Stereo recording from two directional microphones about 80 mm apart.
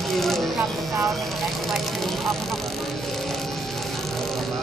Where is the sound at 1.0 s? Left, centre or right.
Centre.